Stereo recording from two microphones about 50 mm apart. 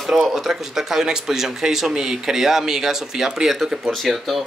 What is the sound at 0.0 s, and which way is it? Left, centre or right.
Speech, centre.